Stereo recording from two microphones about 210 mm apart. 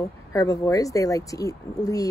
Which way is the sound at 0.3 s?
15° left (ahead or behind).